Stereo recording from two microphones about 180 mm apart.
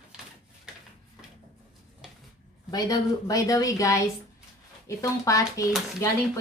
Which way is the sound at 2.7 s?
20° left (ahead or behind).